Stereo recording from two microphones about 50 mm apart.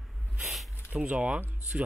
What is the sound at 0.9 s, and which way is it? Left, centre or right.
Speech, right.